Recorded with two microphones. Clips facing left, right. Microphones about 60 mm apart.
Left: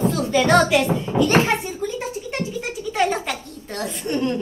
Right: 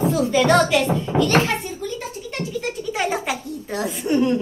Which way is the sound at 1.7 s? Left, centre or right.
Centre.